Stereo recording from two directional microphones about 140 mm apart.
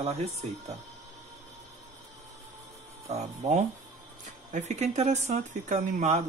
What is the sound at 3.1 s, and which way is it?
Speech, 50° right (ahead or behind).